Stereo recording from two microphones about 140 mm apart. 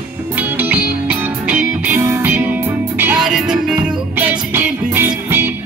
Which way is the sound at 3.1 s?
5° right (ahead or behind).